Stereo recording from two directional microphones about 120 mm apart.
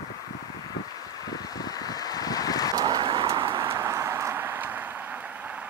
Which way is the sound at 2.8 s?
40° right (ahead or behind).